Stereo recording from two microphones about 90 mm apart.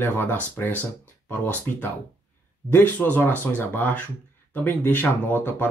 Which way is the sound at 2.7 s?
25° left (ahead or behind).